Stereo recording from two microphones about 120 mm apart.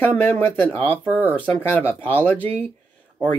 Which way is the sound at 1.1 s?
15° right (ahead or behind).